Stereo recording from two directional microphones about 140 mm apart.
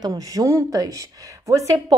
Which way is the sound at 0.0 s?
25° right (ahead or behind).